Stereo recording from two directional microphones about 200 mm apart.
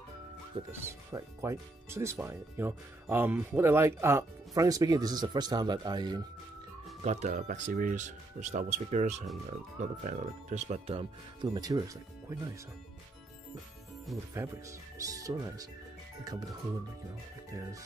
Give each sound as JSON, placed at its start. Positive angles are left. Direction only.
{"t": 0.7, "sound": "speech", "side_deg": -15}
{"t": 7.0, "sound": "speech", "side_deg": -35}
{"t": 14.1, "sound": "speech", "side_deg": 0}
{"t": 15.0, "sound": "speech", "side_deg": -15}